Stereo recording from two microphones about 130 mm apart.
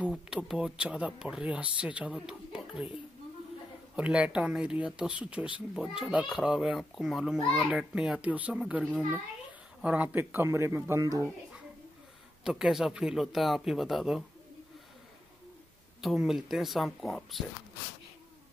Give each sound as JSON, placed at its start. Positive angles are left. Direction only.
{"t": 0.1, "sound": "speech", "side_deg": -5}
{"t": 3.9, "sound": "a child's voice", "side_deg": -10}
{"t": 12.4, "sound": "a child's voice", "side_deg": -5}
{"t": 16.0, "sound": "a child's voice", "side_deg": 0}